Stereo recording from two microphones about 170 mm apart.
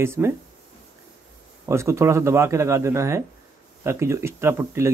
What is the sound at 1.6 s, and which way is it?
Speech, 15° right (ahead or behind).